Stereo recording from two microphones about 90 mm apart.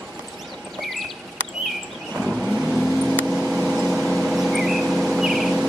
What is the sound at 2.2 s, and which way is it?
Vehicle, centre (ahead or behind).